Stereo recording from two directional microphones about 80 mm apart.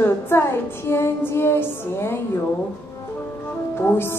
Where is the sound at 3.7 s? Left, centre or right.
Left.